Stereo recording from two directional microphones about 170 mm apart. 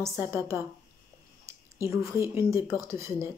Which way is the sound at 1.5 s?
15° right (ahead or behind).